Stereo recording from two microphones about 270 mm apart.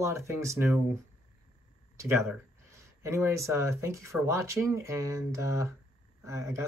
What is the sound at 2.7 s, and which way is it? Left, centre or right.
Speech, centre.